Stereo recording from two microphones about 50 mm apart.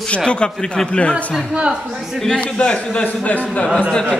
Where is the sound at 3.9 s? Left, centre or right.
Centre.